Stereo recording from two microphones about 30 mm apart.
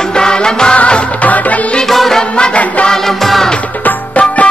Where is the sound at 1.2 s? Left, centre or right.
Left.